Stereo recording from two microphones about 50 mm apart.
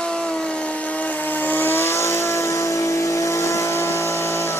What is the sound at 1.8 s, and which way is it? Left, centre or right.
Vehicle, left.